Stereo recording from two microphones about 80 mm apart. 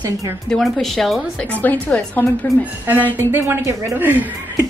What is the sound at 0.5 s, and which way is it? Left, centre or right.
Speech, centre.